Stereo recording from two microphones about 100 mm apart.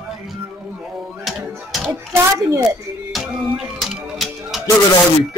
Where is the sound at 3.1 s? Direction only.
5° right (ahead or behind).